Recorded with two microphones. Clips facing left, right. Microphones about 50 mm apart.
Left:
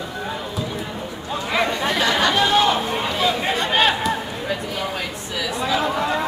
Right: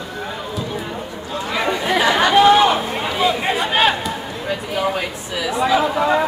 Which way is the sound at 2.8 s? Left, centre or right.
Centre.